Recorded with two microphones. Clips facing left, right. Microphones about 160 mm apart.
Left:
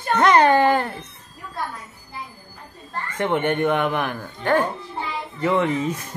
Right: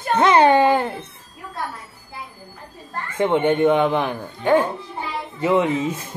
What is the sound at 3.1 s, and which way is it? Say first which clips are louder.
Speech: right 4 dB; 15° right (ahead or behind).